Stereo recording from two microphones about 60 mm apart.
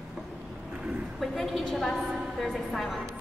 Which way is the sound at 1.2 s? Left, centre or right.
Centre.